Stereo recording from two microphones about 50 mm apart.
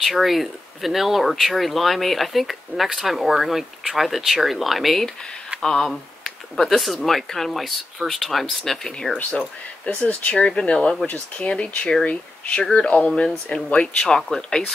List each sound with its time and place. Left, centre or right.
0.0 s speech: centre
5.6 s speech: centre
9.4 s speech: left
14.0 s speech: centre